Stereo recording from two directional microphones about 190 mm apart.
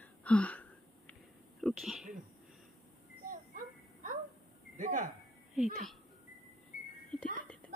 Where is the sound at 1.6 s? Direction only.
Centre (ahead or behind).